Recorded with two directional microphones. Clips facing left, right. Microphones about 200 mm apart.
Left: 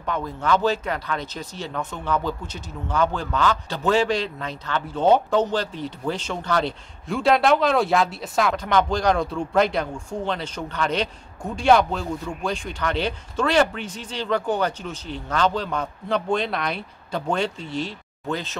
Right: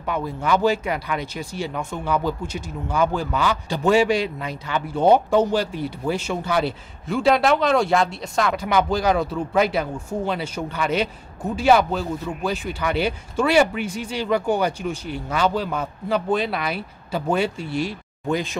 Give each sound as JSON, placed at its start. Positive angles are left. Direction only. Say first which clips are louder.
{"t": 0.0, "sound": "speech", "louder": "right 1 dB", "side_deg": -10}
{"t": 8.5, "sound": "speech", "louder": "right 1 dB", "side_deg": -10}